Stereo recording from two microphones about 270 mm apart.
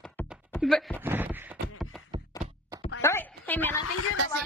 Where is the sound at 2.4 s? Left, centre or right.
Centre.